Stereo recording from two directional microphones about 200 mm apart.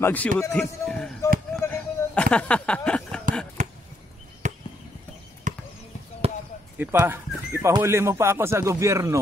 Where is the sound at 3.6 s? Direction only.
35° right (ahead or behind).